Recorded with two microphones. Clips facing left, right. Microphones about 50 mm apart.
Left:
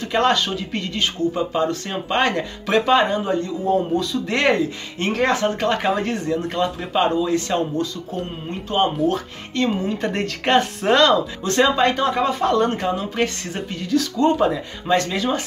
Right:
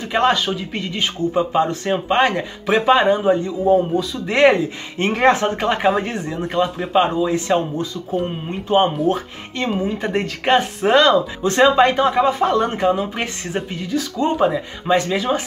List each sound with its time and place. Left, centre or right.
0.0 s speech: centre
4.4 s speech: right